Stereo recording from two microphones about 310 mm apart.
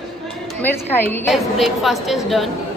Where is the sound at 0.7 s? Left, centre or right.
Centre.